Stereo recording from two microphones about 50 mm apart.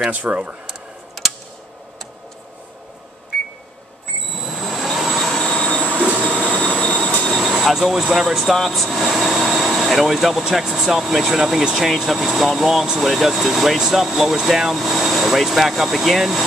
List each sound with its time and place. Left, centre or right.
0.1 s speech: right
4.4 s vehicle: centre
5.3 s train: centre
5.8 s train: right
7.2 s speech: centre